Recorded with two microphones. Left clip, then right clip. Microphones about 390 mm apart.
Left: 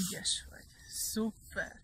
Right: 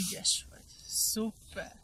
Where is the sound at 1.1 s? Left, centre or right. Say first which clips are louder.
Right 2 dB; centre.